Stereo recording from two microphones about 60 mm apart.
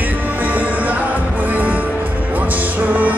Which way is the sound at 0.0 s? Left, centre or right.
Right.